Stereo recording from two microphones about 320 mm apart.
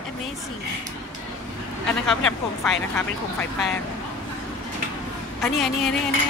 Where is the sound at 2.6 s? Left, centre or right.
Centre.